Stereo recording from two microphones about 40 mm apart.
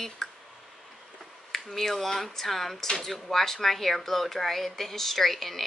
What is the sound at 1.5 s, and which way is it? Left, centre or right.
A woman's voice, centre.